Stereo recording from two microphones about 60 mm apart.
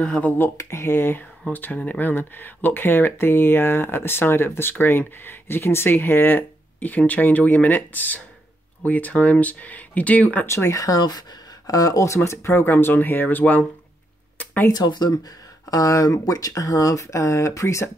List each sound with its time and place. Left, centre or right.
0.6 s speech: left
1.5 s speech: left
10.4 s speech: left
10.8 s speech: left
12.2 s speech: left
12.7 s speech: left
14.4 s a sound: left
14.7 s speech: left